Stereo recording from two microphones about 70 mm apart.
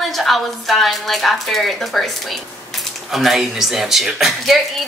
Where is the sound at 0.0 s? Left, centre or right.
Centre.